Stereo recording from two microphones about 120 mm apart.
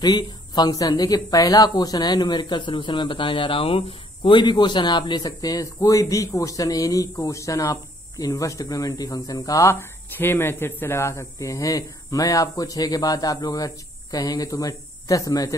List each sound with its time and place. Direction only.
0.0 s speech: 35° left (ahead or behind)